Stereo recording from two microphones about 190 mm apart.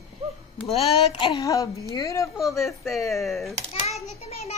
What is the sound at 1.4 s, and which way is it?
Speech, 15° left (ahead or behind).